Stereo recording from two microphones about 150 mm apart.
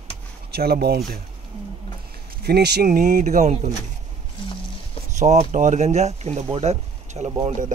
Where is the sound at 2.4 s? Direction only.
90° right; by 3.5 s 55° right (ahead or behind).